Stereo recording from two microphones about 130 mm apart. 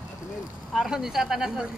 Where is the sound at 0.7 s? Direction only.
5° right (ahead or behind).